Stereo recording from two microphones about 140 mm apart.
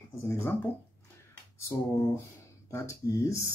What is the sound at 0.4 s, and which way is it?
Speech, 15° left (ahead or behind).